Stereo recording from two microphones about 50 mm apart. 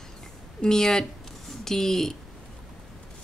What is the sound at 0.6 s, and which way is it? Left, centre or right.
Speech, centre.